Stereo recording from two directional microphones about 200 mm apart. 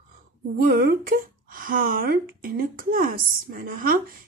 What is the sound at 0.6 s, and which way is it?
A woman's voice, 50° right (ahead or behind).